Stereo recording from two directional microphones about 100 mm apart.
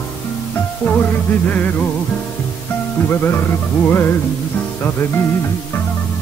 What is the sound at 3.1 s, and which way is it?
Music, 25° left (ahead or behind).